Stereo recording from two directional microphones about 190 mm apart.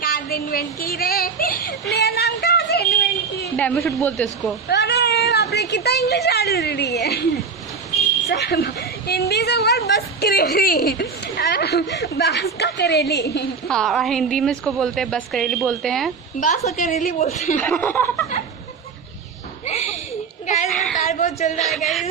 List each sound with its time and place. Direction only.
0.0 s speech: 55° left (ahead or behind)
3.5 s speech: 10° left (ahead or behind)
4.6 s speech: 60° left (ahead or behind)
8.3 s a woman's voice: 60° left (ahead or behind)
13.7 s a woman's voice: centre (ahead or behind)
16.3 s a woman's voice: 45° left (ahead or behind)
17.6 s speech: 10° left (ahead or behind)
19.6 s a sound: 40° left (ahead or behind)
21.0 s a woman's voice: 35° left (ahead or behind)